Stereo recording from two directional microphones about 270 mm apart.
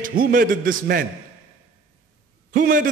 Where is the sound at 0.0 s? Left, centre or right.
Right.